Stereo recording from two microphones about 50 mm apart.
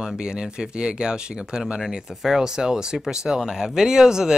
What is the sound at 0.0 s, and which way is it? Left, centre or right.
Speech, centre.